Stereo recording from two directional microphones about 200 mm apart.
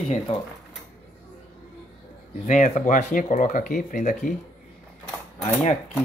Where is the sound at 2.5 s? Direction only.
35° left (ahead or behind).